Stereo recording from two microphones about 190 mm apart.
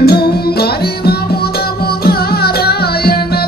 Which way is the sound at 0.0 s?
55° left (ahead or behind).